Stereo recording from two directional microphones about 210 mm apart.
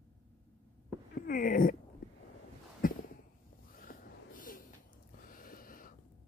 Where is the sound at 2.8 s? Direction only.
40° left (ahead or behind).